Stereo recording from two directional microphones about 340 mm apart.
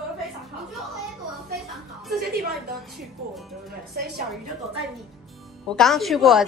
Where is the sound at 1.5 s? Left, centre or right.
Centre.